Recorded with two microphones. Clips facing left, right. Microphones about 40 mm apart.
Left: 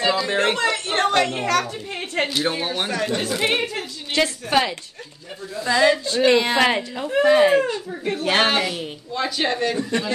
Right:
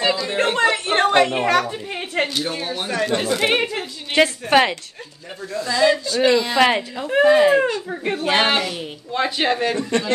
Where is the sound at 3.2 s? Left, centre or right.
Centre.